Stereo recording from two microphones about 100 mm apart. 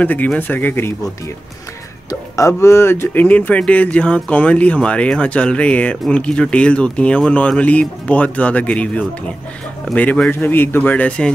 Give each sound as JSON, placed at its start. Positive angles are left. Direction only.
{"t": 0.0, "sound": "speech", "side_deg": 15}
{"t": 2.0, "sound": "speech", "side_deg": 30}